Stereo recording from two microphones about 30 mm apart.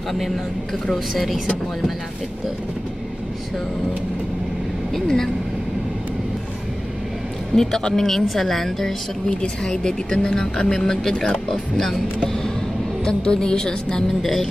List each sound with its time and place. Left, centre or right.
0.9 s speech: centre
5.0 s speech: centre
7.5 s speech: centre
9.8 s speech: left
13.0 s speech: left